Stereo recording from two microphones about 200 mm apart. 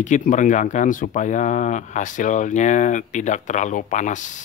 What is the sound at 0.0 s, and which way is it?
Speech, 40° left (ahead or behind).